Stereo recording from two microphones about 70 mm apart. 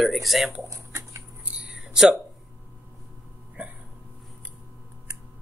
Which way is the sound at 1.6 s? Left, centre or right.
Centre.